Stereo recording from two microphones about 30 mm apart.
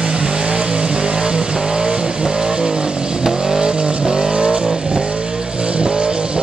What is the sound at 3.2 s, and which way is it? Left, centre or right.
Vehicle, centre.